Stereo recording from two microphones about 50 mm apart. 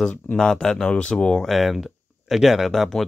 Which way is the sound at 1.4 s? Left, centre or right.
Centre.